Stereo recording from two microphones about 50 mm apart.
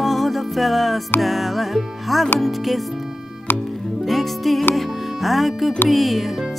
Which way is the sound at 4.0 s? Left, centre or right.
Centre.